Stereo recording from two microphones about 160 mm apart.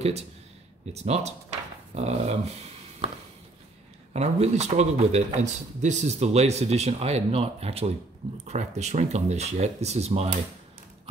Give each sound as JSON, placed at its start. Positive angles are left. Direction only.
{"t": 0.9, "sound": "speech", "side_deg": -40}
{"t": 2.0, "sound": "a sound", "side_deg": -40}
{"t": 4.1, "sound": "speech", "side_deg": -45}